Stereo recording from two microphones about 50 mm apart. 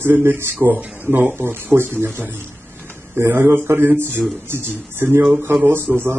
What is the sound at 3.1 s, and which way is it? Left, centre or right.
Speech, right.